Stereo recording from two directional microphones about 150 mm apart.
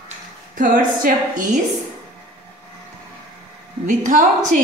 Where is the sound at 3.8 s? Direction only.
60° right (ahead or behind).